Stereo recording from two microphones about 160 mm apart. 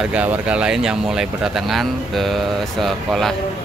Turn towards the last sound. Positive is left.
turn(degrees=0)  # may be behind; listen again after turning